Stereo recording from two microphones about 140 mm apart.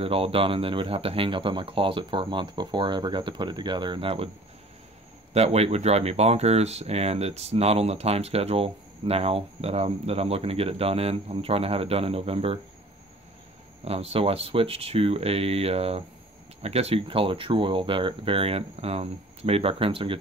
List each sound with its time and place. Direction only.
0.0 s speech: 40° right (ahead or behind)
5.3 s speech: 45° right (ahead or behind)
13.8 s speech: 45° right (ahead or behind)